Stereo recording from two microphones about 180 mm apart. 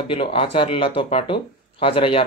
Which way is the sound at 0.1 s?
30° left (ahead or behind).